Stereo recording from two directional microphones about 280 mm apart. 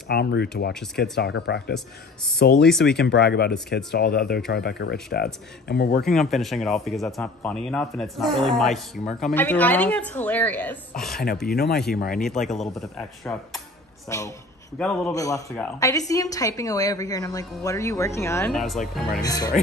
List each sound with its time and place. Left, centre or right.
0.1 s speech: left
6.0 s speech: centre
11.4 s speech: left
12.4 s a woman's voice: centre
19.2 s a woman's voice: centre